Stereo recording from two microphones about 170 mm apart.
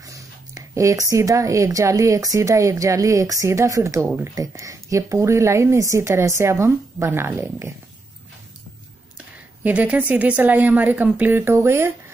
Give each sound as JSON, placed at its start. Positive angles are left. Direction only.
{"t": 0.0, "sound": "speech", "side_deg": -20}
{"t": 9.6, "sound": "speech", "side_deg": -10}